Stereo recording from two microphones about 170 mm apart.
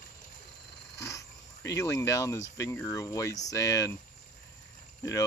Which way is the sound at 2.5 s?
20° left (ahead or behind).